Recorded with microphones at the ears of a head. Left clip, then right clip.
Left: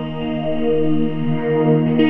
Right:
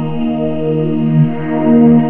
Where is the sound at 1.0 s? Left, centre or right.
Right.